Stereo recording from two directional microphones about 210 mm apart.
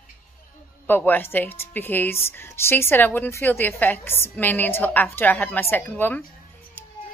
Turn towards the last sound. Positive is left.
turn(degrees=10)  # may be behind; listen again after turning